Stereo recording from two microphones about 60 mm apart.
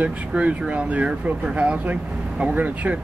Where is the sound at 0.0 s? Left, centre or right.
Right.